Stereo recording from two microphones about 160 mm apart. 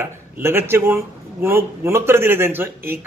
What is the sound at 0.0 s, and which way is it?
A man's voice, 15° right (ahead or behind).